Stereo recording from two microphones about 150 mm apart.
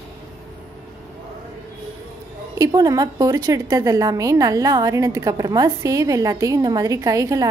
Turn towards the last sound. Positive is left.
turn(degrees=-20)  # may be behind; listen again after turning